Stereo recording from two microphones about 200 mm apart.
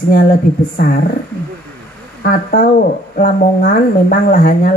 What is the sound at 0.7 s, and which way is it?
Speech, 45° left (ahead or behind).